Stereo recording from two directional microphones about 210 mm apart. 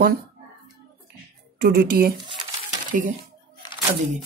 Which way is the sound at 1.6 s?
45° right (ahead or behind).